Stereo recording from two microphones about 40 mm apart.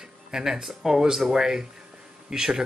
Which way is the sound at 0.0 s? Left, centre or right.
Centre.